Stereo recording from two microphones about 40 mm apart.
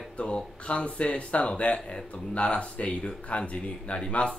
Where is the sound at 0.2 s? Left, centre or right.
Left.